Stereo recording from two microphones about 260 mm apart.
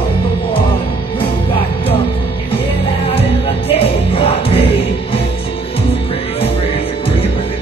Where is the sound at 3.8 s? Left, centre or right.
Left.